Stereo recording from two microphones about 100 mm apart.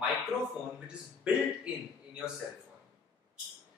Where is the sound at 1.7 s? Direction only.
10° right (ahead or behind).